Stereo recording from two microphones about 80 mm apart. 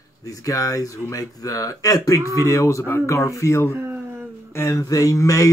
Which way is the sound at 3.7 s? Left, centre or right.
Right.